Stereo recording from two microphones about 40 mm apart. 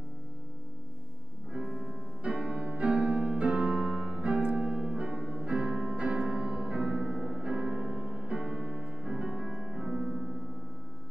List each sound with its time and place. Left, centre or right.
1.5 s music: centre
2.2 s music: right
4.6 s piano: centre
4.9 s music: centre